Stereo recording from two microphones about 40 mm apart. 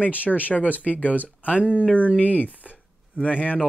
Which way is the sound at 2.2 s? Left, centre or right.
Left.